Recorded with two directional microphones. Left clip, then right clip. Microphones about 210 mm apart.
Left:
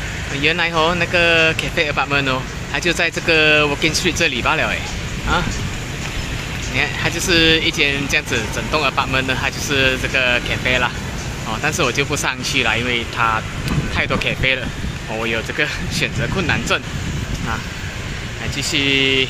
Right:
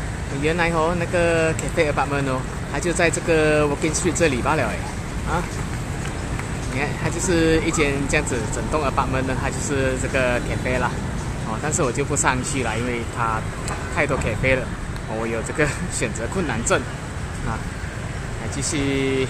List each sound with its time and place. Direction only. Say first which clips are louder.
0.4 s speech: left 4 dB; centre (ahead or behind)
6.8 s speech: left 6 dB; 5° right (ahead or behind)
18.6 s speech: left 7 dB; 5° right (ahead or behind)